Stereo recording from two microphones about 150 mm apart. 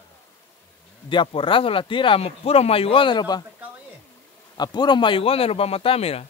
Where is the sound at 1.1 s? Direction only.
35° left (ahead or behind).